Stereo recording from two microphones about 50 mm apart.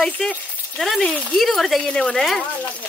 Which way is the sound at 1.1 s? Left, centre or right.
Left.